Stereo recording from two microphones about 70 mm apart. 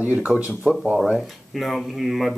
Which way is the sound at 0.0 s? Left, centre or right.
Right.